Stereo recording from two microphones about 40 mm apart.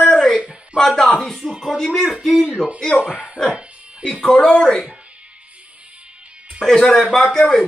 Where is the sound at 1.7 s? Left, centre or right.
Centre.